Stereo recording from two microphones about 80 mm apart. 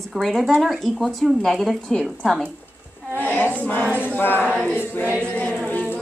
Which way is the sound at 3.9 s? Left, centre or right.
Right.